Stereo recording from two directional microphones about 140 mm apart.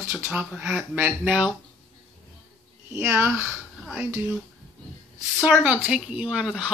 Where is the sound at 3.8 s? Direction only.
Centre (ahead or behind).